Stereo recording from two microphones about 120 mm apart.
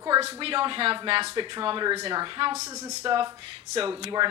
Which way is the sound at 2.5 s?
25° right (ahead or behind).